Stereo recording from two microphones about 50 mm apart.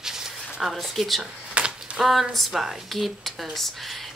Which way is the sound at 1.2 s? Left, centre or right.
Right.